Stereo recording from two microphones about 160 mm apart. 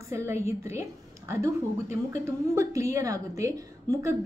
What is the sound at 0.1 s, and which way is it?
A woman's voice, 15° right (ahead or behind).